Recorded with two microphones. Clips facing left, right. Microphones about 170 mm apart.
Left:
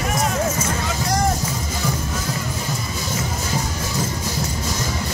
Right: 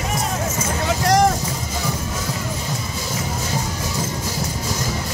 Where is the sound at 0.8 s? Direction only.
85° right.